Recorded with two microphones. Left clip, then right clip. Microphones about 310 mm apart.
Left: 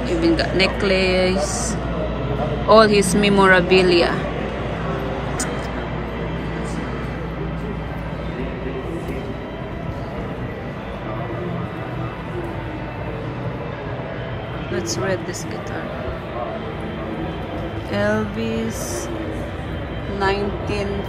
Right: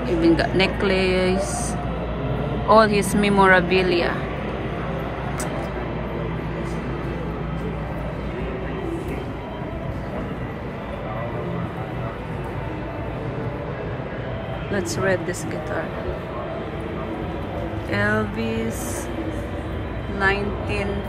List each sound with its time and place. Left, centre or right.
0.0 s speech: centre
14.7 s speech: centre
17.9 s speech: centre
20.2 s speech: centre